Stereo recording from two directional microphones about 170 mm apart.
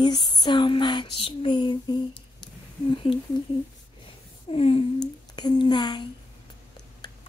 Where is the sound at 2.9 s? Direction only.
30° left (ahead or behind).